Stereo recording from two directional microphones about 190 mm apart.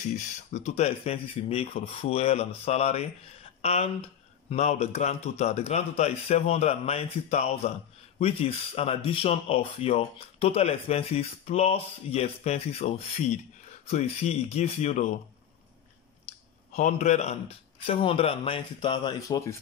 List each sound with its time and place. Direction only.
0.5 s speech: 35° left (ahead or behind)
16.7 s a man's voice: 40° left (ahead or behind); by 19.5 s 20° left (ahead or behind)